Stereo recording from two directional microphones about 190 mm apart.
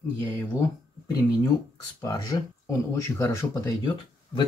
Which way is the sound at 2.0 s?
15° left (ahead or behind).